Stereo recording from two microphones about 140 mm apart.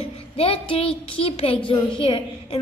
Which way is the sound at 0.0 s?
45° left (ahead or behind).